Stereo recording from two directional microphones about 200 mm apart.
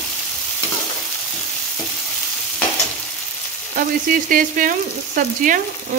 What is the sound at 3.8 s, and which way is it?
Frying, 45° right (ahead or behind).